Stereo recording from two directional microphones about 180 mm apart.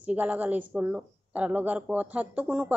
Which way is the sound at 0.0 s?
10° right (ahead or behind).